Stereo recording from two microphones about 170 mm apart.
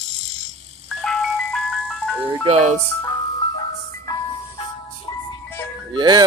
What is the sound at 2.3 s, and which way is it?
Speech, 35° right (ahead or behind).